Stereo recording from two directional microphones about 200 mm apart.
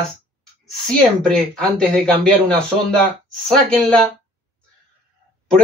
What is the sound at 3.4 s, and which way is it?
Speech, 5° left (ahead or behind).